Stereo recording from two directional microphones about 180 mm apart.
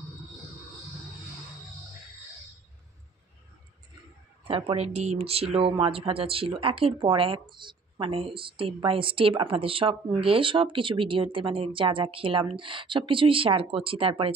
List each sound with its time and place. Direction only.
4.5 s speech: 30° right (ahead or behind)